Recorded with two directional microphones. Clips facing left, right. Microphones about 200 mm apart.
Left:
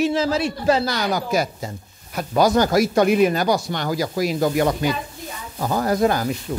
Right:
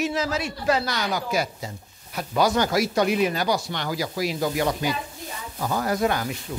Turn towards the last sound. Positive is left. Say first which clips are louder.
# left 5 dB
turn(degrees=45)  # may be behind; listen again after turning